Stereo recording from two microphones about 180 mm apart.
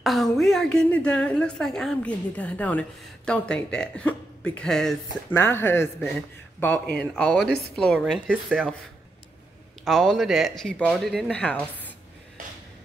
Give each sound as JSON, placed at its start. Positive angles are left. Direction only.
{"t": 0.0, "sound": "a woman's voice", "side_deg": 0}
{"t": 7.4, "sound": "a woman's voice", "side_deg": 65}
{"t": 7.7, "sound": "a woman's voice", "side_deg": 5}
{"t": 9.8, "sound": "a woman's voice", "side_deg": 0}